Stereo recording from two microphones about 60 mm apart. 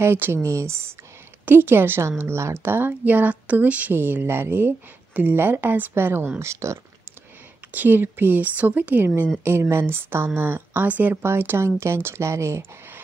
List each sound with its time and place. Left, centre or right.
0.0 s a woman's voice: right
2.9 s speech: right
3.9 s a woman's voice: right
6.4 s speech: right
7.7 s a woman's voice: right
11.2 s speech: right